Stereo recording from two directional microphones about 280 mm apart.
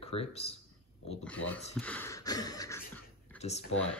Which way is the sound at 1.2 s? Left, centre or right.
Centre.